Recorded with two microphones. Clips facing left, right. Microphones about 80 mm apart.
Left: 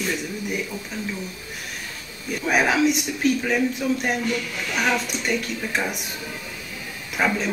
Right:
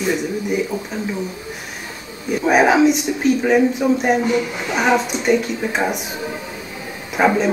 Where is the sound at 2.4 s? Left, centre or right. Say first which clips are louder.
Right 7 dB; right.